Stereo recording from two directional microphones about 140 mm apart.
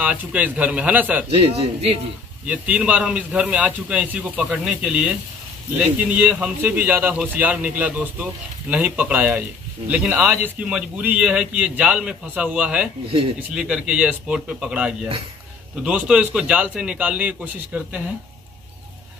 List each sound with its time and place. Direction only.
0.0 s a man's voice: 10° right (ahead or behind)
1.3 s speech: 45° right (ahead or behind)
2.4 s a man's voice: 10° right (ahead or behind)